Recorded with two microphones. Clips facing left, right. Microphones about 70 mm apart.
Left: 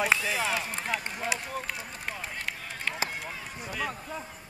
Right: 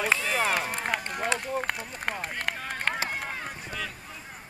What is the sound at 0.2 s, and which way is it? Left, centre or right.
Speech, right.